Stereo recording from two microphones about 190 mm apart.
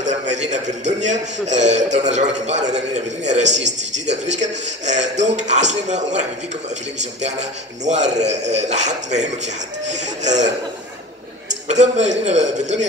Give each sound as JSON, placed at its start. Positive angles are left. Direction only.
{"t": 0.0, "sound": "a man's voice", "side_deg": -40}